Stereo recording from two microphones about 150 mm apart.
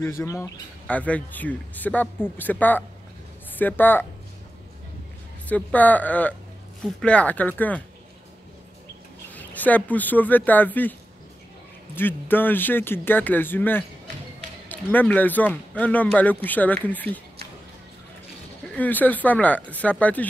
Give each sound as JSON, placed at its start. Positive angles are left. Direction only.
{"t": 0.0, "sound": "speech", "side_deg": 20}
{"t": 5.5, "sound": "speech", "side_deg": 10}
{"t": 9.3, "sound": "speech", "side_deg": 10}
{"t": 18.6, "sound": "speech", "side_deg": 10}